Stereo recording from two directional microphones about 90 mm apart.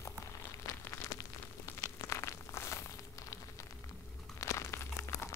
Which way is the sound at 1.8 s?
30° left (ahead or behind).